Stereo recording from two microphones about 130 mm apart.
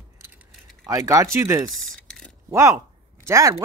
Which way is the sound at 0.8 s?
25° right (ahead or behind).